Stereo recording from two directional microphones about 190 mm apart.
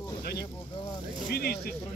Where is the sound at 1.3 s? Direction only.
55° left (ahead or behind).